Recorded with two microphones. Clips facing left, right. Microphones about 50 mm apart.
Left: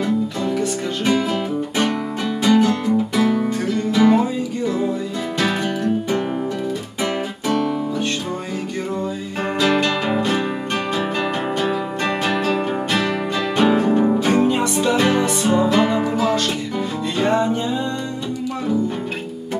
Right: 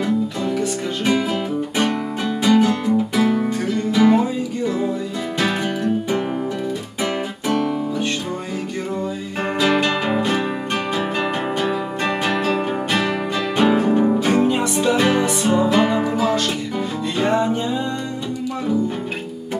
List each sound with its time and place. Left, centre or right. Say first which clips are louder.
0.0 s music: even; centre
5.4 s music: even; centre
9.4 s music: even; right